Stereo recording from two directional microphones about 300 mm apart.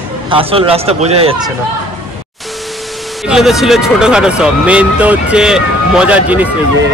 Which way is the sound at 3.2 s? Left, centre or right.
Centre.